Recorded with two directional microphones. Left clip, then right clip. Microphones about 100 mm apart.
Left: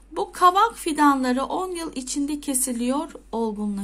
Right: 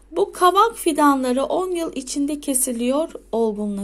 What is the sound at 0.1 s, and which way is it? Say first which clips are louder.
A woman's voice: right 2 dB; 25° right (ahead or behind).